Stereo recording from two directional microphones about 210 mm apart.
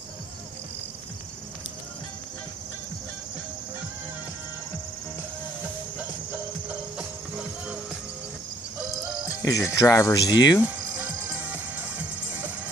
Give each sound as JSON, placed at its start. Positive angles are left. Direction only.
{"t": 9.4, "sound": "speech", "side_deg": 15}